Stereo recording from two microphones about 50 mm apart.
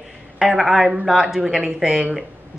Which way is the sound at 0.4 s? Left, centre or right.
Centre.